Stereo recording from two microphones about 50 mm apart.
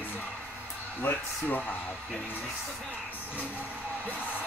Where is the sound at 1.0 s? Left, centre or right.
Left.